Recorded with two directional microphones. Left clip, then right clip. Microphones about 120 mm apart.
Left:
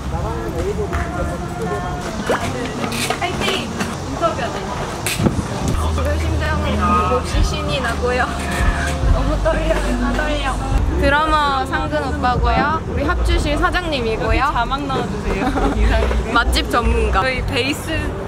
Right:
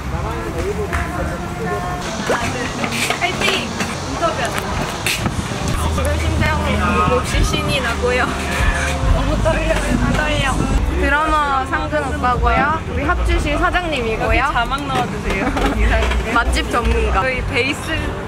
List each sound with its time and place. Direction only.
7.5 s speech: 5° right (ahead or behind)
11.1 s a woman's voice: 35° left (ahead or behind)
11.5 s speech: 20° left (ahead or behind)
15.9 s speech: 20° left (ahead or behind)